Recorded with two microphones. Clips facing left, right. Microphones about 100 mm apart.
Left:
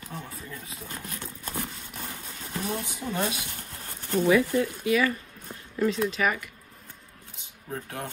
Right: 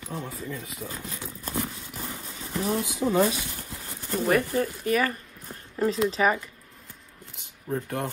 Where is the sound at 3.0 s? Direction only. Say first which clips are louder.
Right 10 dB; 75° right (ahead or behind).